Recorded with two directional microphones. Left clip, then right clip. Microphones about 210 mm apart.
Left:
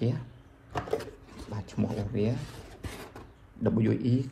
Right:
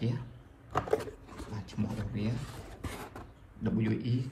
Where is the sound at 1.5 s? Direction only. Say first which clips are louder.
Left 7 dB; 10° right (ahead or behind).